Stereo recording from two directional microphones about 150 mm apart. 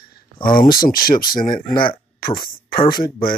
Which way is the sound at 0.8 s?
70° left (ahead or behind).